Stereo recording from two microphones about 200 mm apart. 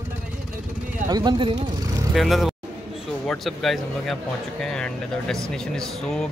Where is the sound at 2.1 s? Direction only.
Centre (ahead or behind).